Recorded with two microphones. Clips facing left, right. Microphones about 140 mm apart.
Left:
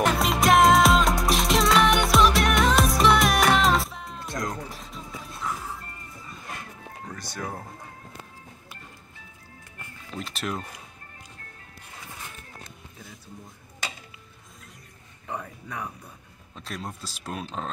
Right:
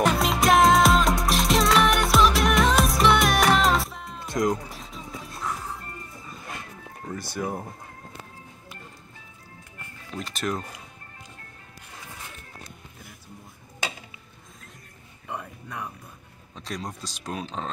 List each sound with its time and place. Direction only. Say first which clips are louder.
0.0 s music: right 1 dB; centre (ahead or behind)
4.3 s music: right 8 dB; 15° right (ahead or behind)
4.6 s music: even; centre (ahead or behind)
7.1 s music: right 5 dB; 10° right (ahead or behind)
10.2 s speech: right 3 dB; 5° left (ahead or behind)
15.2 s a sound: left 1 dB; 5° right (ahead or behind)
16.5 s speech: right 2 dB; 5° left (ahead or behind)